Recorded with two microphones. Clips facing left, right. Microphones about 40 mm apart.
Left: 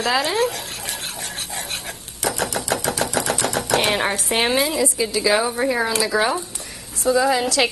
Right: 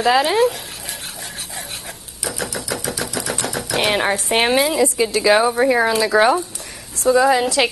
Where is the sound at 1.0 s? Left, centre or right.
Left.